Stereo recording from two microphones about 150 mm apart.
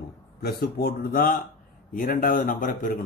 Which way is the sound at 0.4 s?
80° left.